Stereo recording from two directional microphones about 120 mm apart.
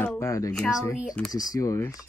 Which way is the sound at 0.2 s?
25° left (ahead or behind).